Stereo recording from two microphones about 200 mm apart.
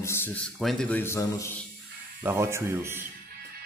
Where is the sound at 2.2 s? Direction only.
15° right (ahead or behind).